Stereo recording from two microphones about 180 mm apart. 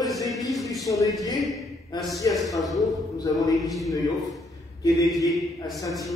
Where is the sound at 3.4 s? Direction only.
20° left (ahead or behind).